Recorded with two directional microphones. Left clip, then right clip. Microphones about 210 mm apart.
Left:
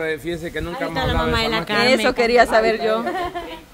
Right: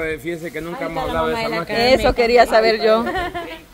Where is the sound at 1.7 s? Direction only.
10° right (ahead or behind); by 3.2 s 25° right (ahead or behind).